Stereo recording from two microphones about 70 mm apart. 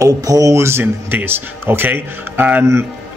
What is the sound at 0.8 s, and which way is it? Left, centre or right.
Speech, right.